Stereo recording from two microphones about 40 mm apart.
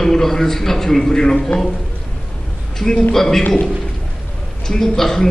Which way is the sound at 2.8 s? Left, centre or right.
Centre.